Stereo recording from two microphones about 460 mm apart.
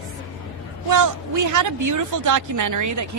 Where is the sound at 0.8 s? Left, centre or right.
Right.